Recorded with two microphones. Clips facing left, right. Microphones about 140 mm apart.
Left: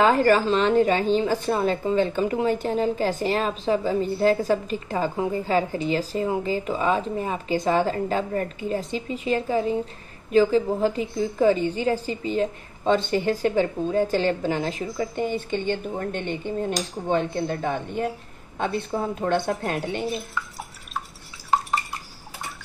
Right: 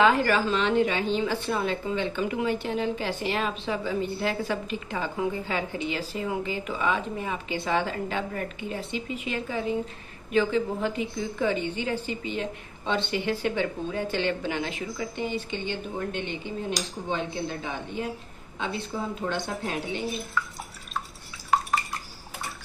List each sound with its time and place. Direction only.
0.0 s a woman's voice: 40° left (ahead or behind)